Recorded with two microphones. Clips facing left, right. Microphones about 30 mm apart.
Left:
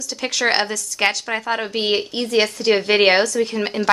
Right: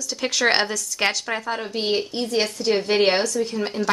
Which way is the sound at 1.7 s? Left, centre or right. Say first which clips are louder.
Left 3 dB; left.